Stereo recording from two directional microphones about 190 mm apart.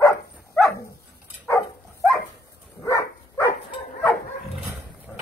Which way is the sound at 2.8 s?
15° left (ahead or behind).